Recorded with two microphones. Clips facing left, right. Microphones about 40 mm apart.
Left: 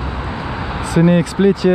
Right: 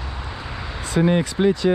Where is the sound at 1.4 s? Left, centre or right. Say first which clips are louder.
Left 5 dB; left.